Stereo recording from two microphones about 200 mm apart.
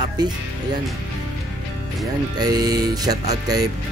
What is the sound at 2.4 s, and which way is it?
Speech, 20° right (ahead or behind).